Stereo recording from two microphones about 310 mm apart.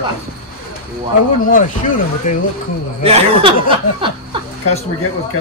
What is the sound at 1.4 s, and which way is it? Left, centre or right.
Speech, left.